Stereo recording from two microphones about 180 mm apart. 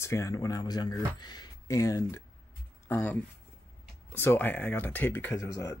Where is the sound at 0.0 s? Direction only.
15° left (ahead or behind).